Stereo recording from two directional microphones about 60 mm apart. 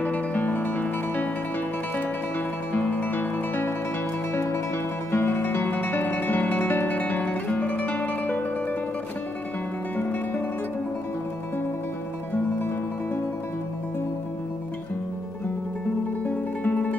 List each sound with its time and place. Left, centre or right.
0.0 s music: left
2.7 s music: left
4.3 s music: left
16.3 s guitar: left